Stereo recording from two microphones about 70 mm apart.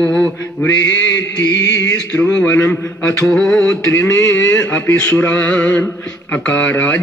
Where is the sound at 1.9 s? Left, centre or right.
Centre.